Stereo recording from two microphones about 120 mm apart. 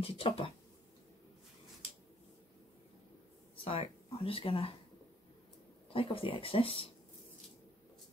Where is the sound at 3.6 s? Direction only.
50° left (ahead or behind).